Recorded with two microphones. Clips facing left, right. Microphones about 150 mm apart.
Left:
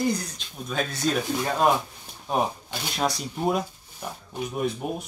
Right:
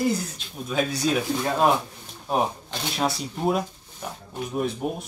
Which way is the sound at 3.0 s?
Centre (ahead or behind).